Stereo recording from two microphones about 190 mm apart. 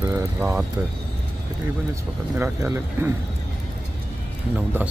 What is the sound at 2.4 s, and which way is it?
Speech, 10° right (ahead or behind).